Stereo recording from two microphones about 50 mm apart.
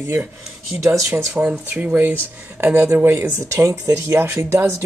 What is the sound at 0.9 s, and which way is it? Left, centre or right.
Speech, right.